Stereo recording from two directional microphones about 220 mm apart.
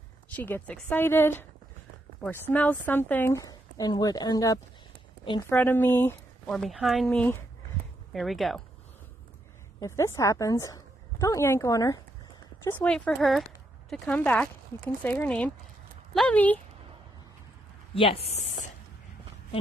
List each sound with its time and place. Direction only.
0.4 s speech: 5° left (ahead or behind)
9.8 s speech: 15° left (ahead or behind)
17.9 s speech: 25° left (ahead or behind)